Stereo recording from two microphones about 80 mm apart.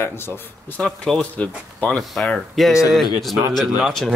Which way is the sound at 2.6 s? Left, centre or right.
Centre.